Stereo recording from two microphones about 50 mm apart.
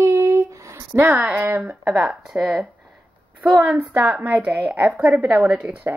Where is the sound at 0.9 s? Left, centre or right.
Right.